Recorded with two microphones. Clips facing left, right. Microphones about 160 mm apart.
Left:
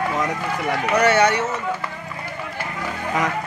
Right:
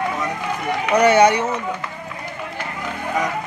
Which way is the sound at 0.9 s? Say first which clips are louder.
Right 4 dB; 15° right (ahead or behind).